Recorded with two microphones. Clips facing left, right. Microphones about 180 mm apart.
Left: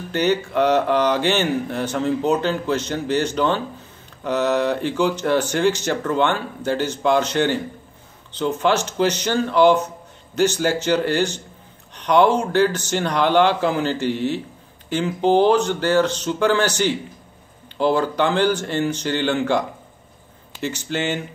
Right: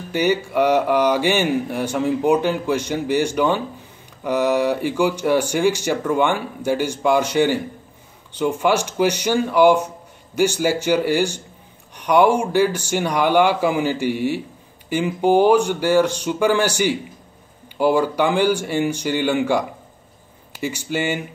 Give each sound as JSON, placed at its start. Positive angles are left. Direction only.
{"t": 0.1, "sound": "speech", "side_deg": -10}
{"t": 20.6, "sound": "speech", "side_deg": -10}